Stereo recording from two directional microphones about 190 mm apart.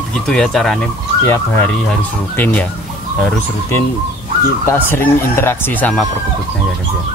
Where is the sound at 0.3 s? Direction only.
Centre (ahead or behind).